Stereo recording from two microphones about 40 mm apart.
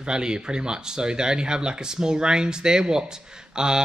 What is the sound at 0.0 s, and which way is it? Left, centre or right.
Speech, centre.